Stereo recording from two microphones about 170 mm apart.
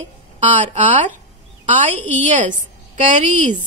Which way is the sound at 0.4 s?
45° right (ahead or behind).